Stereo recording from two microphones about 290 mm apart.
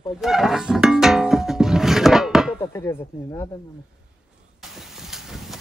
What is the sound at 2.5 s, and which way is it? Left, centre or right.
Speech, centre.